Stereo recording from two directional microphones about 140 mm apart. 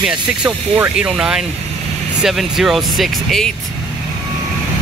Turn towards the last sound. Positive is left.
turn(degrees=0)  # may be behind; listen again after turning